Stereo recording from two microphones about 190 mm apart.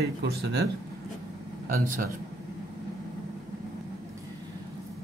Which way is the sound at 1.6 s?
50° right (ahead or behind).